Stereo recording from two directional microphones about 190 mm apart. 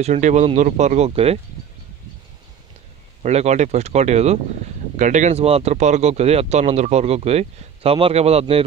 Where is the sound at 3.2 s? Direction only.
35° right (ahead or behind).